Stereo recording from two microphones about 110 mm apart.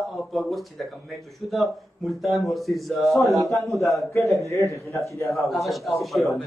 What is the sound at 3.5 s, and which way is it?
Speech, 30° right (ahead or behind).